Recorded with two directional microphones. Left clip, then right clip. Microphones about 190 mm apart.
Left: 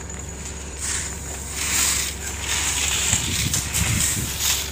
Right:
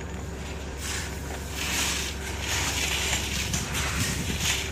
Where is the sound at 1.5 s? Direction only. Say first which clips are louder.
Left 5 dB; 35° right (ahead or behind).